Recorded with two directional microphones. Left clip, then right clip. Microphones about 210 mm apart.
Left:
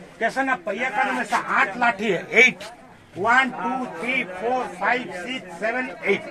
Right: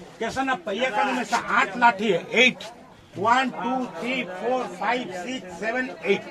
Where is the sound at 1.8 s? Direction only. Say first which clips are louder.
Right 2 dB; 15° left (ahead or behind).